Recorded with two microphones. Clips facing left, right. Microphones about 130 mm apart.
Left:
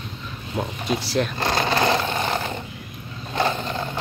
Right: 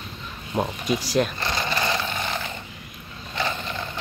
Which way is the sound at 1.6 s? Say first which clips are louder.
Left 6 dB; 65° left (ahead or behind).